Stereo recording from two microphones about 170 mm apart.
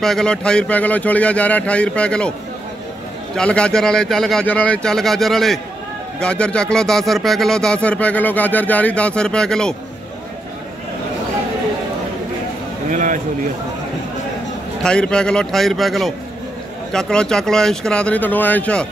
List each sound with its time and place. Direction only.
0.0 s speech: 5° left (ahead or behind)
3.3 s speech: 5° left (ahead or behind)
12.9 s speech: 50° right (ahead or behind)
14.8 s speech: 5° left (ahead or behind)